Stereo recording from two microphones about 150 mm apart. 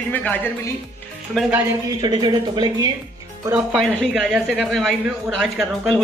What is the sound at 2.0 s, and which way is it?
Speech, 30° right (ahead or behind).